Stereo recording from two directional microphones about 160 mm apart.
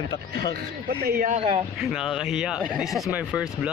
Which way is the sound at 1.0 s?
70° right (ahead or behind).